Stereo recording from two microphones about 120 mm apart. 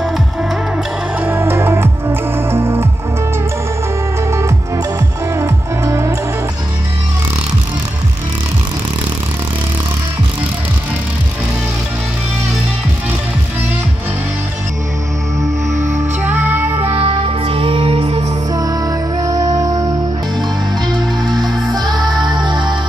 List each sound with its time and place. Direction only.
1.2 s music: 20° right (ahead or behind)
4.3 s music: 25° right (ahead or behind)
15.7 s music: 90° right
16.2 s music: 15° right (ahead or behind)
16.8 s music: 55° right (ahead or behind)
18.5 s music: 30° right (ahead or behind)
22.1 s music: centre (ahead or behind)
22.4 s music: 40° right (ahead or behind)